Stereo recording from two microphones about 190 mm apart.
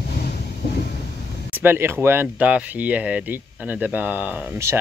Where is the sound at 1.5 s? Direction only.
10° right (ahead or behind).